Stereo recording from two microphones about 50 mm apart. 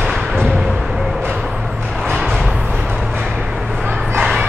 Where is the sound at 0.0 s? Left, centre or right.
Centre.